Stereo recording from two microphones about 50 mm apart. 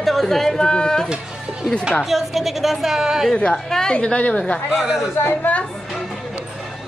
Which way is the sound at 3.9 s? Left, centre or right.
Left.